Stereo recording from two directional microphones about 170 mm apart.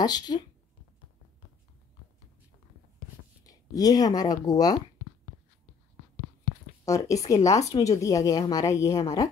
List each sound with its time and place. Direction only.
0.0 s speech: 25° left (ahead or behind)
3.4 s speech: 20° left (ahead or behind)
6.8 s speech: 20° left (ahead or behind)